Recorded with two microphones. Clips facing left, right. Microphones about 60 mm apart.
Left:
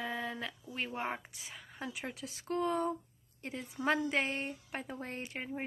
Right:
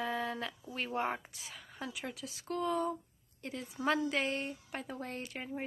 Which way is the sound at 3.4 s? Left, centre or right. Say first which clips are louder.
Even; left.